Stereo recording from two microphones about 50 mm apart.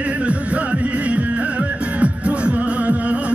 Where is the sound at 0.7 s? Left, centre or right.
Right.